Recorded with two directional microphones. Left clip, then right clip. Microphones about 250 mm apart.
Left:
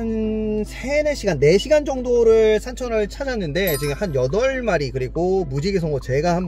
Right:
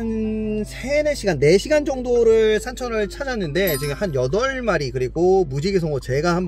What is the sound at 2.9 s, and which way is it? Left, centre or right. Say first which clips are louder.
Speech: left 2 dB; centre.